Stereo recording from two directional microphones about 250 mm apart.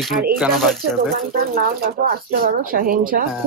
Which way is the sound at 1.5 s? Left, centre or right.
Right.